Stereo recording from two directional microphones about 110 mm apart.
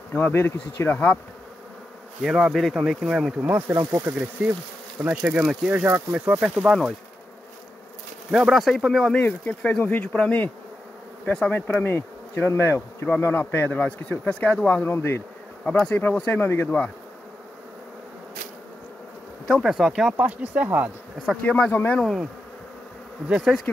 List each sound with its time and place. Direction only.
0.1 s speech: 15° left (ahead or behind)
2.2 s speech: centre (ahead or behind)
3.4 s speech: 15° right (ahead or behind)
5.0 s speech: 10° right (ahead or behind)
6.7 s speech: centre (ahead or behind)
8.3 s speech: 5° right (ahead or behind); by 11.6 s 10° left (ahead or behind)
11.6 s bee: 20° left (ahead or behind)
13.8 s speech: 10° left (ahead or behind)
19.4 s speech: centre (ahead or behind)
20.2 s speech: 15° right (ahead or behind)
21.4 s speech: 10° left (ahead or behind)
22.0 s speech: 5° left (ahead or behind)